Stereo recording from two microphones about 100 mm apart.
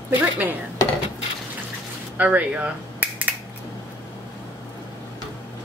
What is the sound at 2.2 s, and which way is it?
Speech, 15° right (ahead or behind).